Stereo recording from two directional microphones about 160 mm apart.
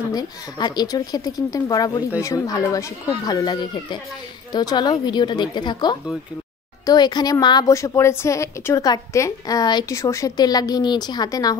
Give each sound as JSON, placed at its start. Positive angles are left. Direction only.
{"t": 0.1, "sound": "a woman's voice", "side_deg": 25}